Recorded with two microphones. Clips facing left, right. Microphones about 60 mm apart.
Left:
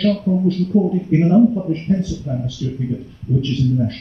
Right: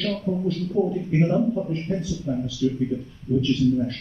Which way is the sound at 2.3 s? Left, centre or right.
Centre.